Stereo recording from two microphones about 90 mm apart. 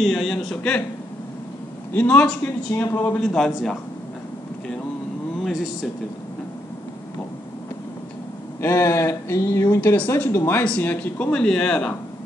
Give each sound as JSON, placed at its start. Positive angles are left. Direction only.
{"t": 0.0, "sound": "a man's voice", "side_deg": 0}
{"t": 2.0, "sound": "speech", "side_deg": 20}
{"t": 3.2, "sound": "speech", "side_deg": 10}
{"t": 5.4, "sound": "speech", "side_deg": -5}
{"t": 8.5, "sound": "a sound", "side_deg": 30}
{"t": 9.8, "sound": "speech", "side_deg": 20}